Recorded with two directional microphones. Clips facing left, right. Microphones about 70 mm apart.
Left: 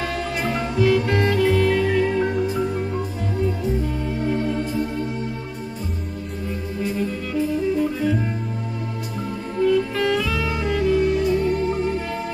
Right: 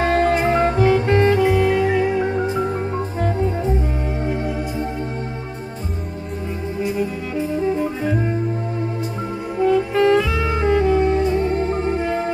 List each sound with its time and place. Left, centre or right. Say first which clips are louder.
0.0 s music: right 8 dB; right; by 2.5 s centre
4.2 s music: left 2 dB; centre
6.8 s music: right 2 dB; centre
9.6 s saxophone: right 3 dB; right